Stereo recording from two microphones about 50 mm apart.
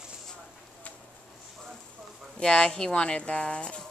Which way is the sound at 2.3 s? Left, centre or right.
Centre.